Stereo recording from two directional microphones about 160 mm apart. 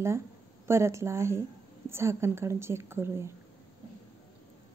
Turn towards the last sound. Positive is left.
turn(degrees=-15)  # may be behind; listen again after turning